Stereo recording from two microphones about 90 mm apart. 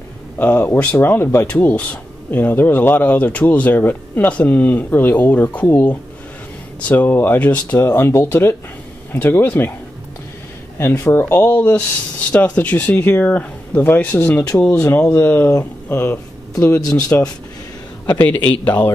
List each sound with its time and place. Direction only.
0.4 s speech: 20° left (ahead or behind)
10.8 s speech: 30° left (ahead or behind)